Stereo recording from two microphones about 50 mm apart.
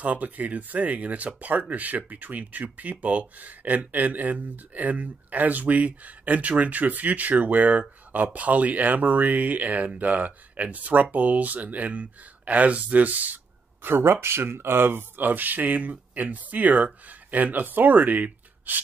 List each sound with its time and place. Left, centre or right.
0.0 s speech: right
13.8 s speech: right